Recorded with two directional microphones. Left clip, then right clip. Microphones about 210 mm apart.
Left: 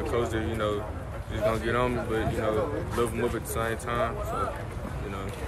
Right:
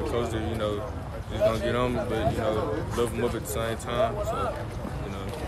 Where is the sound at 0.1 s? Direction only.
5° right (ahead or behind).